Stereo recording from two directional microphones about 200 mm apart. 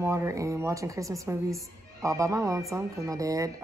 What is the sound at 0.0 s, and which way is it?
Speech, 15° right (ahead or behind).